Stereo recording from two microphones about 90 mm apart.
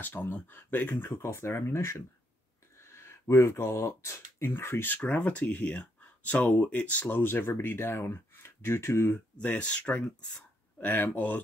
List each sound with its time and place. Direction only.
0.0 s speech: 20° left (ahead or behind)
9.4 s speech: 15° left (ahead or behind)